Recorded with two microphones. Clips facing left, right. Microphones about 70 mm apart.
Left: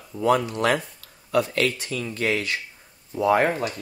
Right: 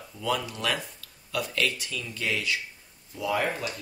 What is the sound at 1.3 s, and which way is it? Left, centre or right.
Speech, left.